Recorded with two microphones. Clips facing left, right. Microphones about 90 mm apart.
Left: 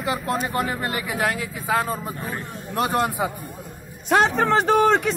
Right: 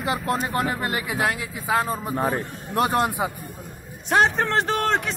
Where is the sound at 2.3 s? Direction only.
30° right (ahead or behind).